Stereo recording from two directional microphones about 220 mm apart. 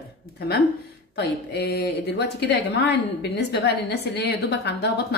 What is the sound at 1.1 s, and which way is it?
Speech, 50° left (ahead or behind).